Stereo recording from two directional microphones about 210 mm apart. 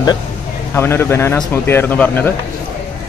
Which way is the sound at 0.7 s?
10° left (ahead or behind).